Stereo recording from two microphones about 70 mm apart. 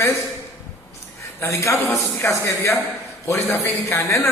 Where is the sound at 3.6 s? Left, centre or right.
Left.